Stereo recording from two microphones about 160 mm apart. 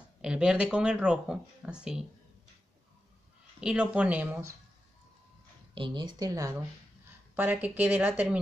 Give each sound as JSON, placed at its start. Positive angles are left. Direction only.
{"t": 0.2, "sound": "speech", "side_deg": -5}
{"t": 3.6, "sound": "speech", "side_deg": -10}
{"t": 5.8, "sound": "a woman's voice", "side_deg": -30}
{"t": 7.3, "sound": "speech", "side_deg": -10}